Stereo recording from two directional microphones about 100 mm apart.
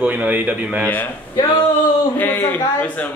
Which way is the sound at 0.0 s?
15° right (ahead or behind).